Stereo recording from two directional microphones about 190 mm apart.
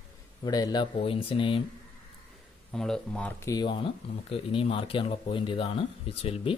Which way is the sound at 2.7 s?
Centre (ahead or behind).